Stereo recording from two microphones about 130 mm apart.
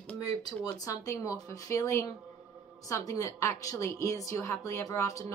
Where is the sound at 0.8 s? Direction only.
25° left (ahead or behind).